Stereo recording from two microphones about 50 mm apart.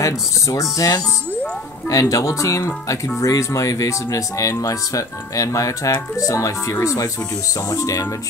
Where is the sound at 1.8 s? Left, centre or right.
Left.